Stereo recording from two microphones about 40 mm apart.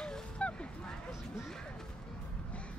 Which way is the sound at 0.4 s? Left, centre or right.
Left.